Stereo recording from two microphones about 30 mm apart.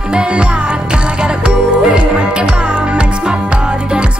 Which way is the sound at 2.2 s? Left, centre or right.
Right.